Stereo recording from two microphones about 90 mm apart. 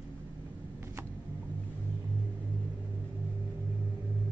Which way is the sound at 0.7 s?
25° right (ahead or behind).